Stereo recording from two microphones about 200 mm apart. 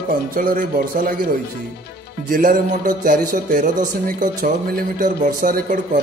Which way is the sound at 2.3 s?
40° right (ahead or behind).